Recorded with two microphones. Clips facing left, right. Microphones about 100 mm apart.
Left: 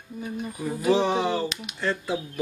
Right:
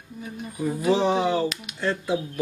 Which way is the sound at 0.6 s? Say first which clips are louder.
Right 1 dB; 10° right (ahead or behind).